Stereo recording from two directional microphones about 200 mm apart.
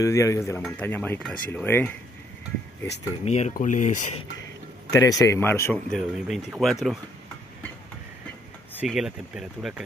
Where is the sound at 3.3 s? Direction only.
35° left (ahead or behind).